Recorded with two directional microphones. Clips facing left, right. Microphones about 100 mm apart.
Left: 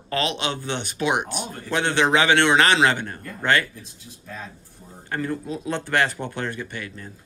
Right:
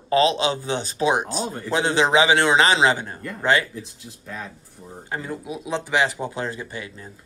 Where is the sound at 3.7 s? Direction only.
90° right.